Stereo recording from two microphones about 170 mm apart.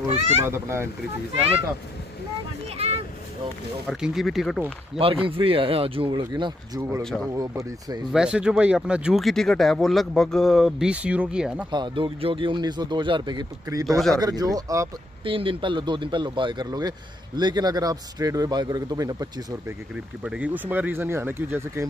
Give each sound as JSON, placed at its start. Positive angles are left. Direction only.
{"t": 0.5, "sound": "speech", "side_deg": -15}
{"t": 3.8, "sound": "speech", "side_deg": -5}
{"t": 4.9, "sound": "speech", "side_deg": -35}
{"t": 7.0, "sound": "speech", "side_deg": 5}
{"t": 7.3, "sound": "speech", "side_deg": -20}
{"t": 8.1, "sound": "speech", "side_deg": -5}
{"t": 11.7, "sound": "speech", "side_deg": -30}
{"t": 13.8, "sound": "speech", "side_deg": 0}
{"t": 14.1, "sound": "speech", "side_deg": -20}
{"t": 15.2, "sound": "speech", "side_deg": -30}
{"t": 20.2, "sound": "speech", "side_deg": -10}